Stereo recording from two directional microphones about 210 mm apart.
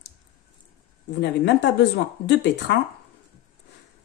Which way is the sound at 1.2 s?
55° left (ahead or behind).